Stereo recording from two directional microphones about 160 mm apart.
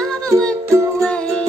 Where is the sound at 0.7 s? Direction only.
20° right (ahead or behind).